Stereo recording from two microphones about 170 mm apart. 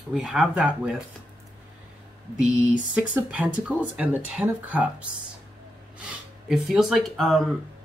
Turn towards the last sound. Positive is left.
turn(degrees=0)  # may be behind; listen again after turning